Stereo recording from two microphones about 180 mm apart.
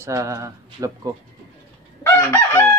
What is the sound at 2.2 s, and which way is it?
Chicken, 15° left (ahead or behind).